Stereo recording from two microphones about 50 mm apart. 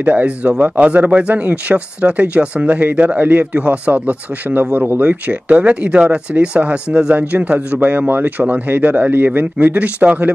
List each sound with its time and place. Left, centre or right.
0.0 s speech: right